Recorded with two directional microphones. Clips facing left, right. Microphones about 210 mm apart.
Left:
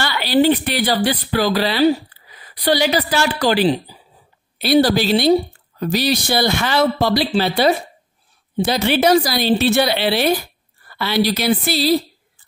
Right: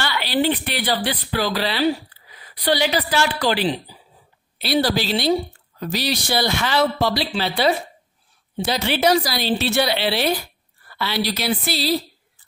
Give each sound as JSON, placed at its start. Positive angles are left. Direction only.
{"t": 0.0, "sound": "speech", "side_deg": 40}